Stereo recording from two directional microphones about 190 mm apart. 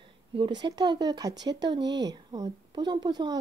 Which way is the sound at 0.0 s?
25° right (ahead or behind).